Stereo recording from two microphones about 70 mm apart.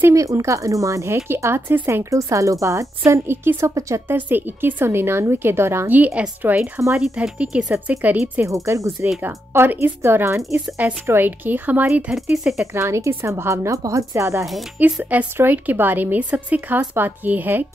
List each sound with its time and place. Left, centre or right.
0.1 s speech: right
2.0 s speech: right
3.1 s a woman's voice: right
5.9 s speech: right
7.0 s speech: centre
7.9 s speech: right
8.5 s speech: right
9.2 s a woman's voice: right
11.9 s speech: centre
12.7 s speech: right
14.8 s speech: right